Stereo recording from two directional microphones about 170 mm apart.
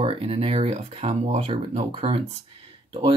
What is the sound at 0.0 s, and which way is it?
Speech, 35° right (ahead or behind).